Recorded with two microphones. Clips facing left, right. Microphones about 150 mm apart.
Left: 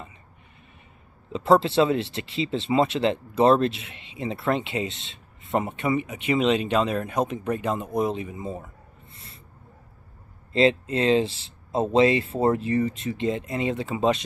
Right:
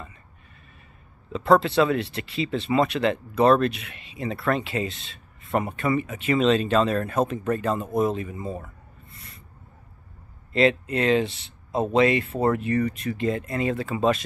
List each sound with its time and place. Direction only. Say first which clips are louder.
1.3 s speech: even; 25° left (ahead or behind)
10.5 s speech: even; 25° left (ahead or behind)